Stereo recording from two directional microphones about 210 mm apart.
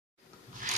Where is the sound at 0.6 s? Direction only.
40° right (ahead or behind).